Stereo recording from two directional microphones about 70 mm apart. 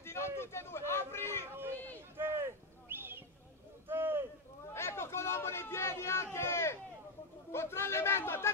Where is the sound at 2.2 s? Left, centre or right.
Right.